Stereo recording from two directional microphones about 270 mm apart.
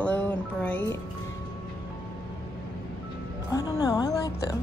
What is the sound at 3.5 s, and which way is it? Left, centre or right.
Oink, centre.